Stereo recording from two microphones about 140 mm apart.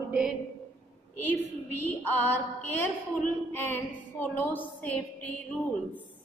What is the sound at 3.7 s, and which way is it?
Music, 15° left (ahead or behind).